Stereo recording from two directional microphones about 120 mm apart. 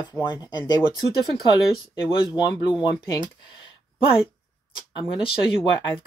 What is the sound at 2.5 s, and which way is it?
Speech, 40° left (ahead or behind).